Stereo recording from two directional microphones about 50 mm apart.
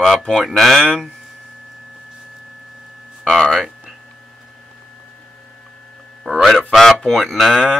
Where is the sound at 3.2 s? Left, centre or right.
Centre.